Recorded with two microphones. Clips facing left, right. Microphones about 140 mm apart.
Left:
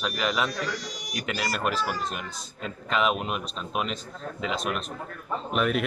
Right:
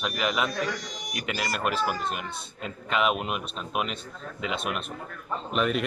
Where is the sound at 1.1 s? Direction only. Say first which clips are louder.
Left 1 dB; centre (ahead or behind).